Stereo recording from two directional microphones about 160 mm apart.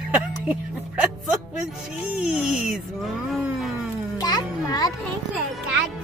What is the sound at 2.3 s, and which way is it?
Speech, 5° right (ahead or behind).